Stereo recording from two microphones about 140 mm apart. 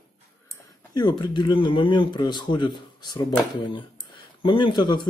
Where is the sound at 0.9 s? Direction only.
30° left (ahead or behind).